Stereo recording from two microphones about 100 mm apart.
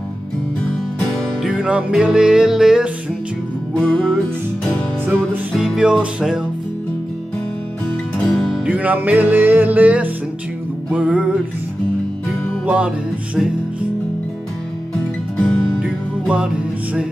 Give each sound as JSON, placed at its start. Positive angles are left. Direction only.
{"t": 1.6, "sound": "music", "side_deg": -10}
{"t": 3.7, "sound": "music", "side_deg": 10}
{"t": 5.6, "sound": "music", "side_deg": -5}
{"t": 8.2, "sound": "music", "side_deg": 5}
{"t": 8.6, "sound": "music", "side_deg": -15}
{"t": 12.6, "sound": "music", "side_deg": -10}
{"t": 15.8, "sound": "music", "side_deg": -10}